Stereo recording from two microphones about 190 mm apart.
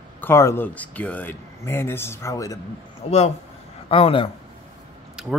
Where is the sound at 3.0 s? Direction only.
35° left (ahead or behind).